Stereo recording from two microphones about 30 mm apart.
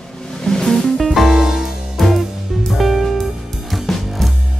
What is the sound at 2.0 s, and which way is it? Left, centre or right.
Music, centre.